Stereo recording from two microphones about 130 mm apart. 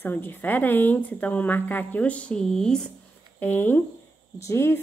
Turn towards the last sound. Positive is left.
turn(degrees=20)  # may be behind; listen again after turning